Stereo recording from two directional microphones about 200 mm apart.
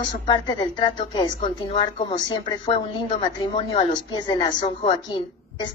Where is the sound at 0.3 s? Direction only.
20° left (ahead or behind).